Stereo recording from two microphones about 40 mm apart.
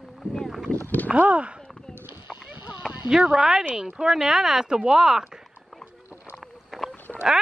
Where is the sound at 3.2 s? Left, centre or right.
Centre.